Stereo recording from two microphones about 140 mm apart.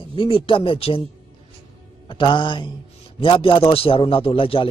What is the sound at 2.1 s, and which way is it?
Speech, 35° left (ahead or behind).